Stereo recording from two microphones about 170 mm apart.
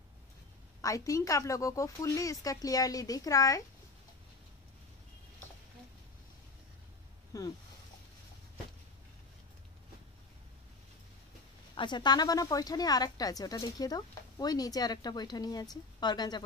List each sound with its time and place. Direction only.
0.7 s a woman's voice: 20° left (ahead or behind)
7.3 s a sound: 20° left (ahead or behind)
11.7 s a woman's voice: 25° left (ahead or behind)